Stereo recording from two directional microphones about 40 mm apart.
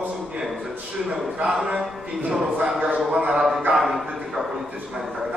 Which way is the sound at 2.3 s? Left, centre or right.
Centre.